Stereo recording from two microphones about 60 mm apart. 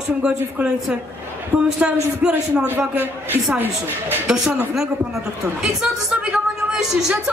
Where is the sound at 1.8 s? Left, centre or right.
Centre.